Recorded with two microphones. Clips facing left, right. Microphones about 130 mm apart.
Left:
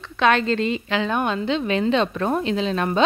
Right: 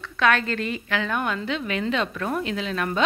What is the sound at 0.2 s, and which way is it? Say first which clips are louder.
A woman's voice: left 4 dB; 25° left (ahead or behind).